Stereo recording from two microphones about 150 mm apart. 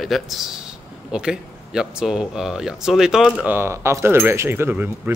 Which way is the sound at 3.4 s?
15° right (ahead or behind).